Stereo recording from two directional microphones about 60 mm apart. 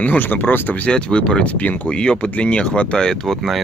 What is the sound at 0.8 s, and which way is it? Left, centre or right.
Speech, centre.